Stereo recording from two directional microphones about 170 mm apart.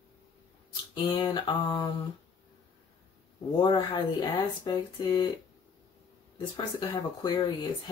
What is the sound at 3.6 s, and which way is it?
Speech, 25° left (ahead or behind).